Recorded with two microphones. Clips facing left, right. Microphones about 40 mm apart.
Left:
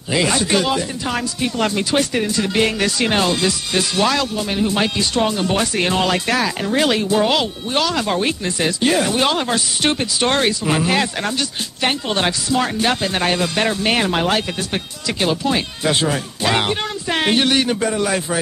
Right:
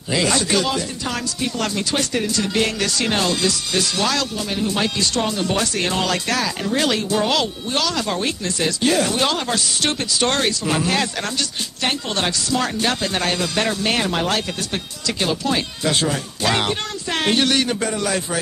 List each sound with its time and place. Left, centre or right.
0.1 s speech: centre